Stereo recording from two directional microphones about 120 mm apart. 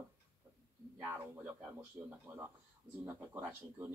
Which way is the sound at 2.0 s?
20° right (ahead or behind).